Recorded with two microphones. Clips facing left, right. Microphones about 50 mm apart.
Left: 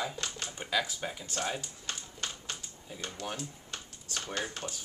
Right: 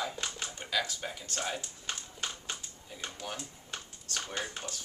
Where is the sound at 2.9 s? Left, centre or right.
Centre.